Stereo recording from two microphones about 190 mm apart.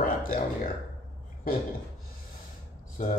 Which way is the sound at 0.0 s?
50° left (ahead or behind).